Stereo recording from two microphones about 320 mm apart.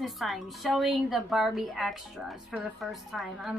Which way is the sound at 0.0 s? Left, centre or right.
Centre.